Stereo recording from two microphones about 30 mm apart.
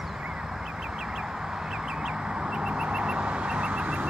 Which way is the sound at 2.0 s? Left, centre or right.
Right.